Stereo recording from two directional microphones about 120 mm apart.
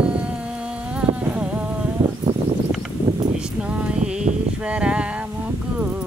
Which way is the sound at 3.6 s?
10° right (ahead or behind).